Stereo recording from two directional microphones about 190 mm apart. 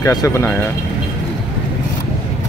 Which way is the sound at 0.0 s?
20° left (ahead or behind).